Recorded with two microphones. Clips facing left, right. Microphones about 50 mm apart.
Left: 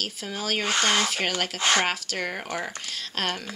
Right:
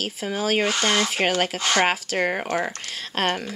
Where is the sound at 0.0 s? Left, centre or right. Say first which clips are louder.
Right 6 dB; centre.